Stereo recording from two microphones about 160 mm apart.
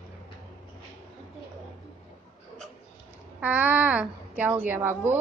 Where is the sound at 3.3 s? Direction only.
10° right (ahead or behind).